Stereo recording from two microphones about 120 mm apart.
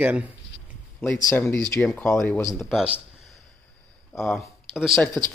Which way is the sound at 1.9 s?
5° left (ahead or behind).